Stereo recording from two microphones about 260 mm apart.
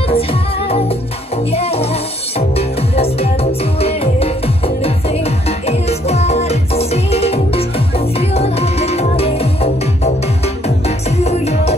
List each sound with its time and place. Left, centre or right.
0.1 s music: left